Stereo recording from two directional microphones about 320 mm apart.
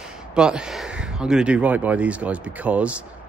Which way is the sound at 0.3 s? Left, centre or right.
Centre.